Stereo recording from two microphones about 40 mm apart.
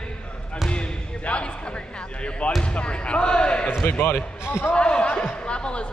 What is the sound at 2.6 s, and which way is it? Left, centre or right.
A man's voice, left.